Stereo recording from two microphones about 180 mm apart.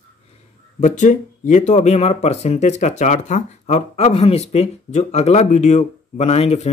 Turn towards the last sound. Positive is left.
turn(degrees=35)  # may be behind; listen again after turning